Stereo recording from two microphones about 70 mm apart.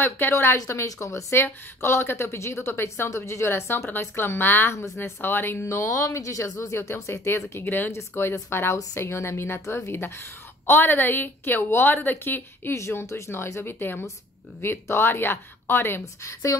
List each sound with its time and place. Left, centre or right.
0.0 s a woman's voice: left
0.6 s a woman's voice: left
5.6 s a woman's voice: left
12.7 s a woman's voice: left
16.0 s speech: left